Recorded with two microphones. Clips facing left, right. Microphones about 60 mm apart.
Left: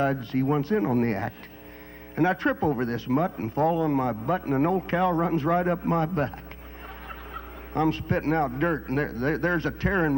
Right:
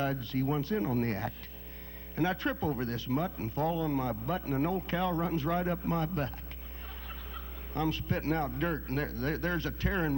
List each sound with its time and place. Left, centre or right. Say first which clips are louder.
0.0 s speech: left 7 dB; left